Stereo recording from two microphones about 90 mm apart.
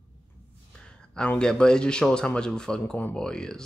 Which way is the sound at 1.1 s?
10° left (ahead or behind).